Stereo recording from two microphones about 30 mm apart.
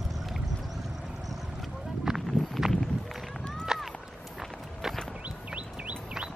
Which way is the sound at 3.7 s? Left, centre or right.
Centre.